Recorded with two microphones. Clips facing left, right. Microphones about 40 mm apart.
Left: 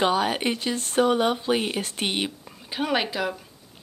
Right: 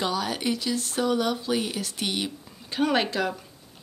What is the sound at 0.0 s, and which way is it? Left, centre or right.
Speech, left.